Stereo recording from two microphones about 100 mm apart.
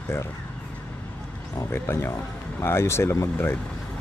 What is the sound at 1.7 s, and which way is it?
Speech, 25° left (ahead or behind).